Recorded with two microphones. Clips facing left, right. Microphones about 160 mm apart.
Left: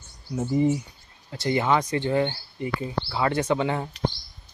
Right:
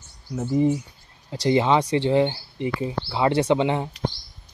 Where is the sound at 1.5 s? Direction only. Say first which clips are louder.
Right 4 dB; 25° right (ahead or behind).